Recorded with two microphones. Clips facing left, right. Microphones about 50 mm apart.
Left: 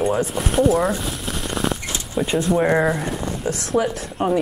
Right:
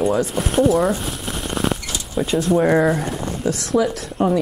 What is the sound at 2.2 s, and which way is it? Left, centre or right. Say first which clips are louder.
Speech: right 1 dB; centre.